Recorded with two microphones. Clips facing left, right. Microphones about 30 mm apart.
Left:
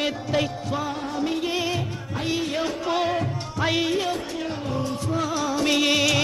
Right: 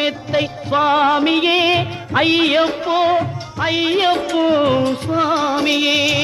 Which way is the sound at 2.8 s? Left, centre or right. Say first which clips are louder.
Right 8 dB; right.